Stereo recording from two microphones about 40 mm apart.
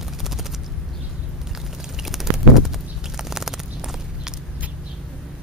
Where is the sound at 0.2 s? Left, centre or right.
Centre.